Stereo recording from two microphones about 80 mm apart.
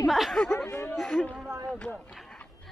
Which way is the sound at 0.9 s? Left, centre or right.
Centre.